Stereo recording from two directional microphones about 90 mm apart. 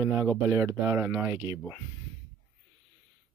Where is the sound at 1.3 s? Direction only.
40° right (ahead or behind).